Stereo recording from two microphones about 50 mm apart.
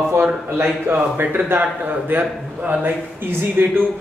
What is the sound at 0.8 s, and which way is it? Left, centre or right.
Speech, right.